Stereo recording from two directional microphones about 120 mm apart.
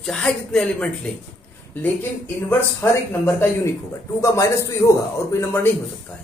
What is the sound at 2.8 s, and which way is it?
A man's voice, 20° left (ahead or behind).